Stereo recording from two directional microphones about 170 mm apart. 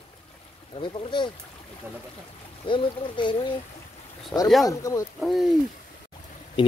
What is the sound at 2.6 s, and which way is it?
Speech, 30° left (ahead or behind).